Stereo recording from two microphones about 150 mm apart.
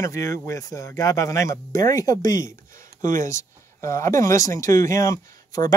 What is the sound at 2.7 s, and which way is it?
Speech, 60° right (ahead or behind).